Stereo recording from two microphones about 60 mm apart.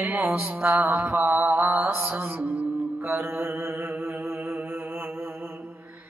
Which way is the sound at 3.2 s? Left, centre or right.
Right.